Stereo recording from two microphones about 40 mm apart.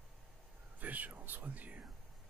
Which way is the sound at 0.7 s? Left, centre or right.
Right.